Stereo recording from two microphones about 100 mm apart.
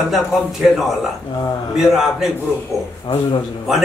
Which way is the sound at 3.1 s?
50° left (ahead or behind).